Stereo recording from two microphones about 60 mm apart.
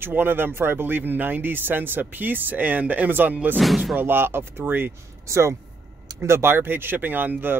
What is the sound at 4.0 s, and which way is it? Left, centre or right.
Speech, right.